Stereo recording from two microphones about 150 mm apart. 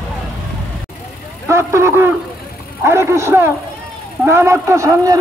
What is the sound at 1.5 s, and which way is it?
A man's voice, 15° right (ahead or behind).